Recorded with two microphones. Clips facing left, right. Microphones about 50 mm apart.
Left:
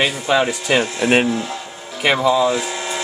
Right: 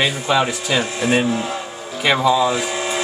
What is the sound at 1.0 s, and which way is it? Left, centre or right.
Speech, left.